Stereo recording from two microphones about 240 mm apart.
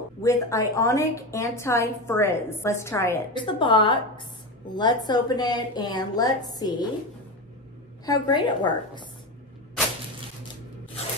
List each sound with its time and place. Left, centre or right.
0.2 s a woman's voice: centre
8.0 s a woman's voice: centre